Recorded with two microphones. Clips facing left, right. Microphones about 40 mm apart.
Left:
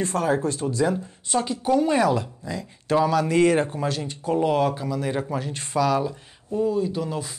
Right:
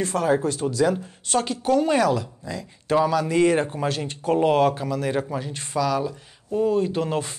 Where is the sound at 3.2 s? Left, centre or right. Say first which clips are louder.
Left 1 dB; left.